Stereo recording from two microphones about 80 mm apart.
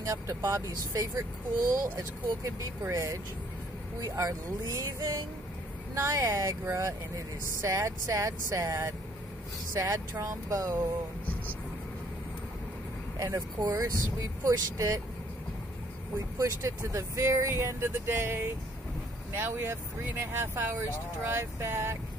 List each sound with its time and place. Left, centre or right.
0.0 s speech: right
2.4 s speech: right
5.9 s speech: right
10.2 s speech: right
13.2 s speech: right
16.3 s speech: right